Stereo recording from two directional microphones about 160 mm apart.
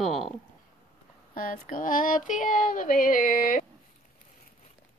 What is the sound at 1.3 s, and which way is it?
Child singing, 55° left (ahead or behind).